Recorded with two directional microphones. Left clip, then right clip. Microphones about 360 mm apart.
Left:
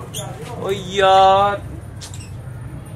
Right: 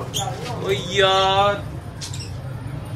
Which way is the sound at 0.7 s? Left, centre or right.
Centre.